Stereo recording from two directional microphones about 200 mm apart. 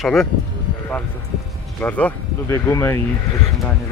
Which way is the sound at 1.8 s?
10° left (ahead or behind).